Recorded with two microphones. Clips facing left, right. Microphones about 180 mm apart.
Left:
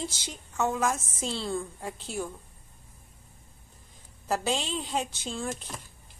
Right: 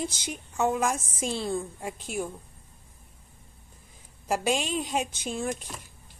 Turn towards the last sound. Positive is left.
turn(degrees=-15)  # may be behind; listen again after turning